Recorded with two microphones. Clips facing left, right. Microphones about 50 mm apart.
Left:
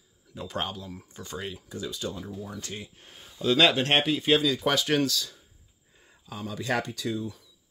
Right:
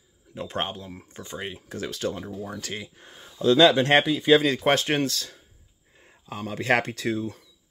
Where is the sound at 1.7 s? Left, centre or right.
Right.